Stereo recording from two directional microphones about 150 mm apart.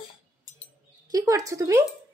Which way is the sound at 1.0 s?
25° right (ahead or behind).